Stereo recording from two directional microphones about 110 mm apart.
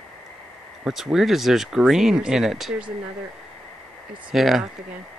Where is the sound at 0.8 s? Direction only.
5° right (ahead or behind).